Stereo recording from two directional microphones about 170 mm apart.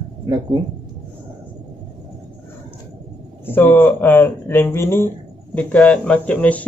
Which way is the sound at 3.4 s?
10° left (ahead or behind).